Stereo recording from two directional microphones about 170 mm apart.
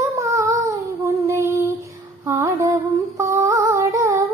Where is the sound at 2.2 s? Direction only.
15° right (ahead or behind).